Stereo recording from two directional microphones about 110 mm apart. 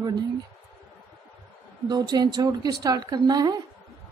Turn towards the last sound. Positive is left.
turn(degrees=-35)  # may be behind; listen again after turning